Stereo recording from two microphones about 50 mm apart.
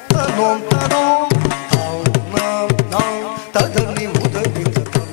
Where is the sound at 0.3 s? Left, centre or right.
Centre.